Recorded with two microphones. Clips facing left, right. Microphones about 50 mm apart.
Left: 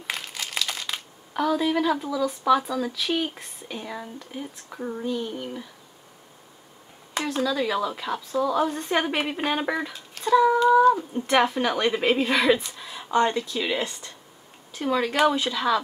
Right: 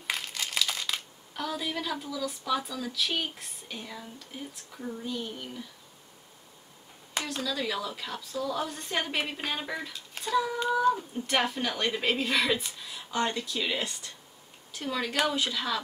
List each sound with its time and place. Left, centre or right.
0.0 s crumpling: centre
1.3 s speech: centre
4.6 s speech: left
5.2 s speech: centre
7.2 s a woman's voice: centre
12.7 s a sound: centre
13.4 s speech: centre
13.7 s a woman's voice: left